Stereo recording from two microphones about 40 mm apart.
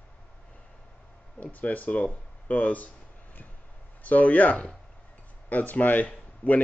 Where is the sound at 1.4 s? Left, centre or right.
Left.